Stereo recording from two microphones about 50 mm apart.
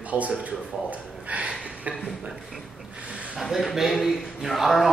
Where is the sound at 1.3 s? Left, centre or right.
Right.